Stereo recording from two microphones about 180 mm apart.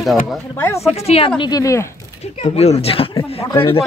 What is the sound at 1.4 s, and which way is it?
Speech, 20° left (ahead or behind).